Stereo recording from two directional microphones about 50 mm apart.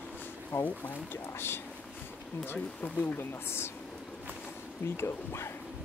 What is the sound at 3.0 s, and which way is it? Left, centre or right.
Speech, left.